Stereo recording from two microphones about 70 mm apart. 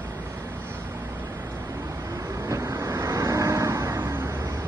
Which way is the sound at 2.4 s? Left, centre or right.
Right.